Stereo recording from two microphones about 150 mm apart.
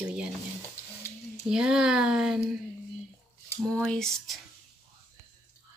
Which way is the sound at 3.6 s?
5° left (ahead or behind).